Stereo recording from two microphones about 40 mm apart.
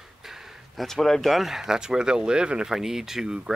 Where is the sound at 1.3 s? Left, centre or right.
Centre.